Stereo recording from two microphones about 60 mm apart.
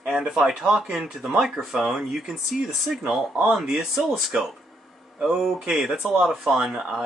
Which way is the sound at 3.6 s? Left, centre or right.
Centre.